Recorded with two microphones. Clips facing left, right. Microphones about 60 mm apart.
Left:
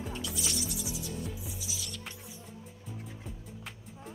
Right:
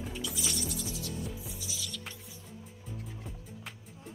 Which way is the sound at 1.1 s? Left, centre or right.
Centre.